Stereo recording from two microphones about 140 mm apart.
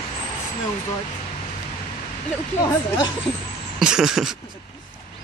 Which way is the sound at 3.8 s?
5° right (ahead or behind).